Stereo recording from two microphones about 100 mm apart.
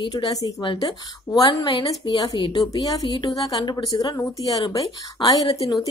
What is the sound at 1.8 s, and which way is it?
Speech, 60° left (ahead or behind).